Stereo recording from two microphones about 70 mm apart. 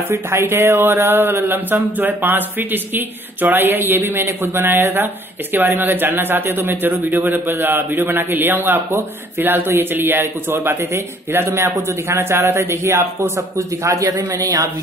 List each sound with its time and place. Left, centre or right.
0.1 s speech: right
14.0 s speech: right